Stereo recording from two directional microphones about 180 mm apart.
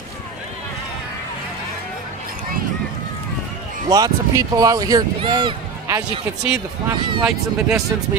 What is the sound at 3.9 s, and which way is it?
Speech, 20° right (ahead or behind).